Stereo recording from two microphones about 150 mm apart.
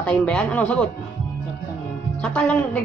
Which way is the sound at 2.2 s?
5° left (ahead or behind).